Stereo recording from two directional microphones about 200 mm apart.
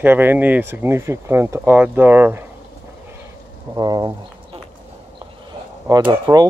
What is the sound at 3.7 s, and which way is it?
Speech, 20° right (ahead or behind).